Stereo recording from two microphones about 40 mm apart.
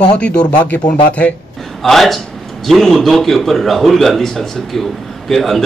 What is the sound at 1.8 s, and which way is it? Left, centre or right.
A man's voice, centre.